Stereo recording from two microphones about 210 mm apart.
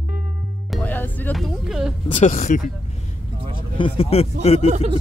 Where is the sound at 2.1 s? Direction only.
35° left (ahead or behind).